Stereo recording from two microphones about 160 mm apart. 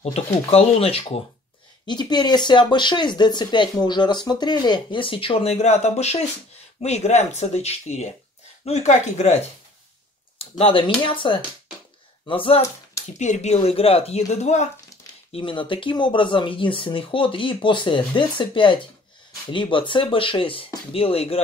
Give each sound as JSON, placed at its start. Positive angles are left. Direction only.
{"t": 0.0, "sound": "speech", "side_deg": 40}
{"t": 1.9, "sound": "speech", "side_deg": 25}
{"t": 10.6, "sound": "speech", "side_deg": 35}
{"t": 13.2, "sound": "speech", "side_deg": 45}
{"t": 15.3, "sound": "speech", "side_deg": 30}